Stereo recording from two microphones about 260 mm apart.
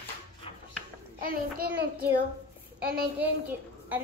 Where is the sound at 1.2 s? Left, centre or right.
Right.